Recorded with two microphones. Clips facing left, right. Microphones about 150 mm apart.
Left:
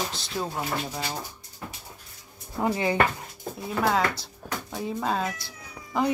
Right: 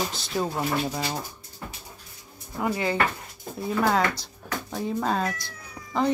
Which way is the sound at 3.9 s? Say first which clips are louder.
Right 1 dB; 5° left (ahead or behind).